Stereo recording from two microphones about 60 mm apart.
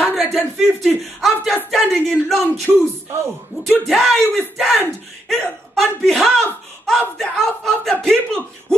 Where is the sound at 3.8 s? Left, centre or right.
Centre.